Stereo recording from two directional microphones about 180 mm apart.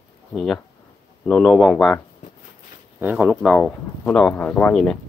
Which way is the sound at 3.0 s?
10° right (ahead or behind).